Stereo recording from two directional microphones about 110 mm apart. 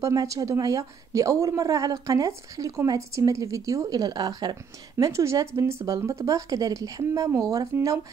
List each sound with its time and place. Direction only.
0.0 s speech: 30° right (ahead or behind)